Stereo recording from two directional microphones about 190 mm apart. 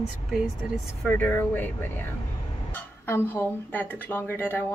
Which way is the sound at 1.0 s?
10° left (ahead or behind).